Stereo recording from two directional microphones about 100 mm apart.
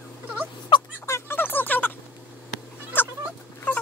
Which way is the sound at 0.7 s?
55° left (ahead or behind).